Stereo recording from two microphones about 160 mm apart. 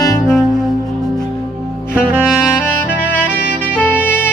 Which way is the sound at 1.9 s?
5° right (ahead or behind).